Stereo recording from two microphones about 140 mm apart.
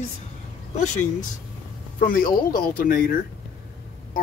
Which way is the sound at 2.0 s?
80° left.